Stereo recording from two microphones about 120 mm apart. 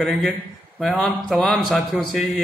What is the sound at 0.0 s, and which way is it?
A man's voice, centre (ahead or behind).